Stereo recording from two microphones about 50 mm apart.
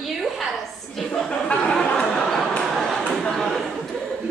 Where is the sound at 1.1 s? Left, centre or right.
Centre.